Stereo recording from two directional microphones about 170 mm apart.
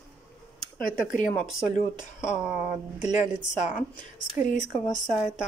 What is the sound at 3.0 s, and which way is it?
Speech, 45° left (ahead or behind).